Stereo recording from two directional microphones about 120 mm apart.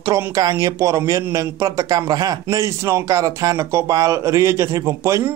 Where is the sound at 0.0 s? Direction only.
30° right (ahead or behind).